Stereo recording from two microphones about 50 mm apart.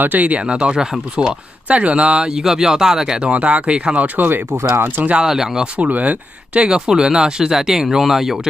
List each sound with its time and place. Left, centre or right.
0.0 s speech: right; by 1.3 s centre
1.7 s speech: right; by 3.3 s centre
3.3 s speech: right
5.1 s speech: centre
5.8 s speech: right
6.7 s speech: centre